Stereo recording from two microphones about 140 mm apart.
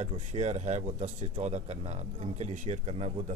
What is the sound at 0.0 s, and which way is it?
Speech, 50° right (ahead or behind).